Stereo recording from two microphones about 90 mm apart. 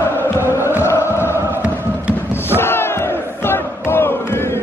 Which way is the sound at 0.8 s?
30° left (ahead or behind).